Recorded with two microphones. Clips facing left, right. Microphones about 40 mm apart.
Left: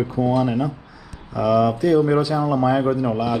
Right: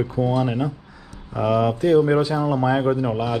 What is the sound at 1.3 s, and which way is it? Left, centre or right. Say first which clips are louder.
Speech: left 2 dB; right.